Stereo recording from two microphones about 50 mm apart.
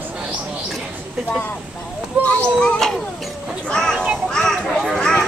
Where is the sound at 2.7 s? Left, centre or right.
Centre.